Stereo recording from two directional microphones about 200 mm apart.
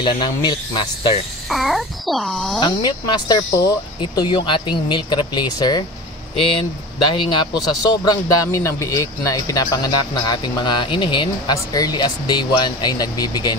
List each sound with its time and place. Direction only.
0.0 s speech: 20° left (ahead or behind)
1.5 s a child's voice: centre (ahead or behind)
2.6 s speech: 20° left (ahead or behind)